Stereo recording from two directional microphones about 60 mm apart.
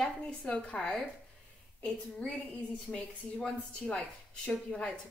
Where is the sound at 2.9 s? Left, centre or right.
Centre.